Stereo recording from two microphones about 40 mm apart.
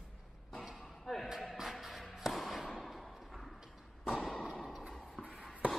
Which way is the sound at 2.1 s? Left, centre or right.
Centre.